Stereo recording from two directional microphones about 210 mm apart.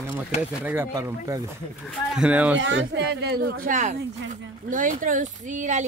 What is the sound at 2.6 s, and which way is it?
Speech, 60° right (ahead or behind).